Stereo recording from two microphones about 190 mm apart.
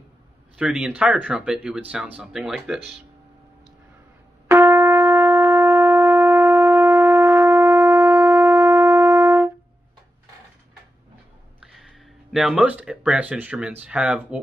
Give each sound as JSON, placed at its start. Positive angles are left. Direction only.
{"t": 0.6, "sound": "speech", "side_deg": -5}
{"t": 4.5, "sound": "wind instrument", "side_deg": -10}
{"t": 11.6, "sound": "speech", "side_deg": 0}